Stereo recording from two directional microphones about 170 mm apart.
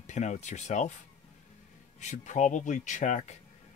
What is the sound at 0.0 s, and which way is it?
Speech, 45° left (ahead or behind).